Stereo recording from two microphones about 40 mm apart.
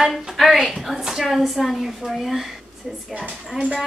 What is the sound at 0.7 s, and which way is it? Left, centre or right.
A woman's voice, centre.